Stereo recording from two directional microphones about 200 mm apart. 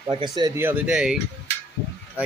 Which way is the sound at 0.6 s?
5° right (ahead or behind).